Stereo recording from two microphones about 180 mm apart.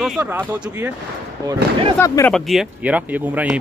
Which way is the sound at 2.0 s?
15° left (ahead or behind).